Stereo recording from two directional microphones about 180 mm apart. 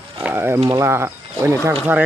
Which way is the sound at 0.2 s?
10° right (ahead or behind).